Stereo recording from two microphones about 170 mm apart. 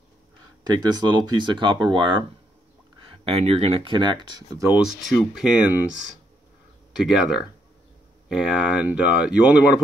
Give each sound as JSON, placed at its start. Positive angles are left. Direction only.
{"t": 0.7, "sound": "speech", "side_deg": -25}
{"t": 4.6, "sound": "speech", "side_deg": 0}
{"t": 7.0, "sound": "speech", "side_deg": -5}